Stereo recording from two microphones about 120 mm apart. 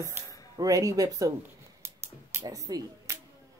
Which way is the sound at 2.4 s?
30° right (ahead or behind).